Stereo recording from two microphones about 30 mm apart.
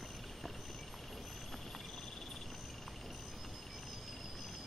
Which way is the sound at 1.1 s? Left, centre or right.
Centre.